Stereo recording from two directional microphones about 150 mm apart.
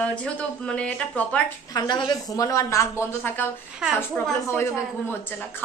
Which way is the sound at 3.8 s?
5° right (ahead or behind).